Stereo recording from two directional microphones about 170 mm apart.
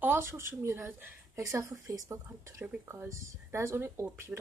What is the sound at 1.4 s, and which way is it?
Speech, 15° right (ahead or behind).